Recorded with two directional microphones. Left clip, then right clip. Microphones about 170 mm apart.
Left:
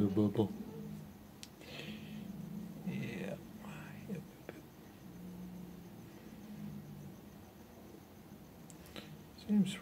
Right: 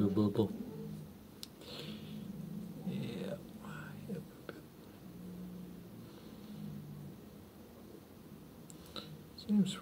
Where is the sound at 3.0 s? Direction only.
15° left (ahead or behind).